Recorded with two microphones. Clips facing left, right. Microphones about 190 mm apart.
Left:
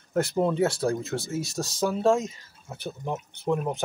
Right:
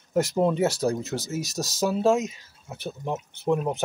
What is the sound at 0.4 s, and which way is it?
Speech, 15° right (ahead or behind).